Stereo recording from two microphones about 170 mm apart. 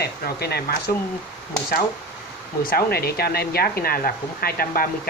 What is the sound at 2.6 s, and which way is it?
Speech, 60° left (ahead or behind).